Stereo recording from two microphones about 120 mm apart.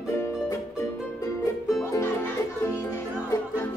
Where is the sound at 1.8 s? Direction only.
25° left (ahead or behind).